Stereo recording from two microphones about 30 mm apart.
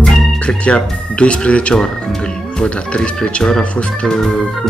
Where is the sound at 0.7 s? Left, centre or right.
Left.